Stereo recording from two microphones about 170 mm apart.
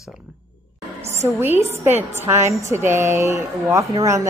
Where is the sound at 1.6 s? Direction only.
15° right (ahead or behind).